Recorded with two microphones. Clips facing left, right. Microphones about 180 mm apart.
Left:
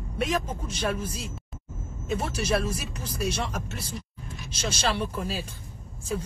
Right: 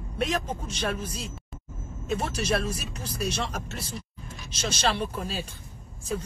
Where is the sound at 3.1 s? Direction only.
10° left (ahead or behind).